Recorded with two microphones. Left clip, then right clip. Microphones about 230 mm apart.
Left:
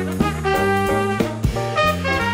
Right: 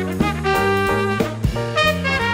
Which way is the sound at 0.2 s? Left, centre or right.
Right.